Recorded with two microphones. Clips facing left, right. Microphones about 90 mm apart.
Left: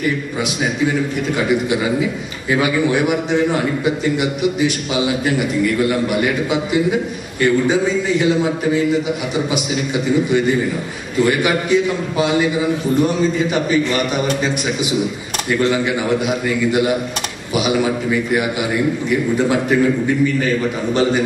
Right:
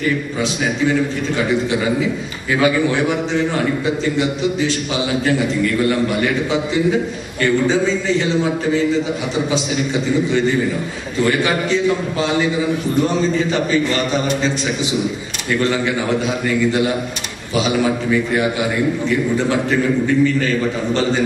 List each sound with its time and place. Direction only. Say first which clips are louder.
2.6 s a man's voice: right 1 dB; 15° left (ahead or behind)
7.6 s a man's voice: even; 15° left (ahead or behind)
11.2 s a man's voice: even; 15° left (ahead or behind)
16.3 s a man's voice: even; 15° left (ahead or behind)